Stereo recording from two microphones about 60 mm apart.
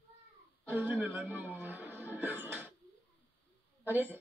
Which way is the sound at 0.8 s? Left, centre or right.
Right.